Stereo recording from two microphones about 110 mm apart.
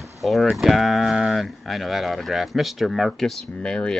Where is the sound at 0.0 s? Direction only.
Centre (ahead or behind).